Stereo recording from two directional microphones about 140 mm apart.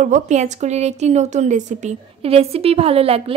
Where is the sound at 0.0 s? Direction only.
60° right (ahead or behind).